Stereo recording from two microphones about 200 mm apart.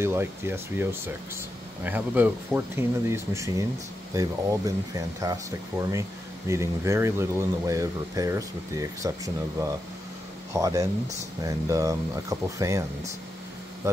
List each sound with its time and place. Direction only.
0.0 s speech: 10° right (ahead or behind)